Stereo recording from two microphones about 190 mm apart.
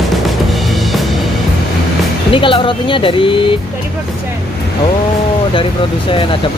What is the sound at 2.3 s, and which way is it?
Speech, 25° left (ahead or behind).